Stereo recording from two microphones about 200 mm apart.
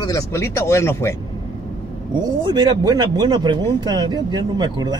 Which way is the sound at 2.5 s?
20° right (ahead or behind).